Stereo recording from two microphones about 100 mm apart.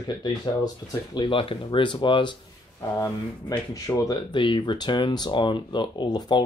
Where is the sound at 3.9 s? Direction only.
30° left (ahead or behind).